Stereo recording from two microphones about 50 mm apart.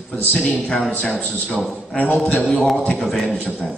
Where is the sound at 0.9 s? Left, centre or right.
Left.